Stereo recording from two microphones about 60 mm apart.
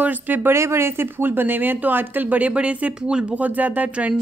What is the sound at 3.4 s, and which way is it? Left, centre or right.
Speech, right.